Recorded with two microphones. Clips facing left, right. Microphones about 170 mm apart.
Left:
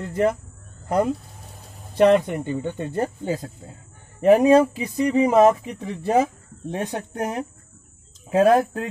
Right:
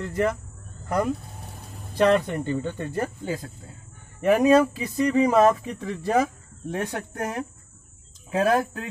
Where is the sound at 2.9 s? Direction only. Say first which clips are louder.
Left 3 dB; 30° left (ahead or behind).